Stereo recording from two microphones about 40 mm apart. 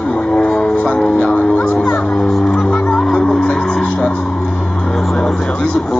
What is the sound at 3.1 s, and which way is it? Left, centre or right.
Music, centre.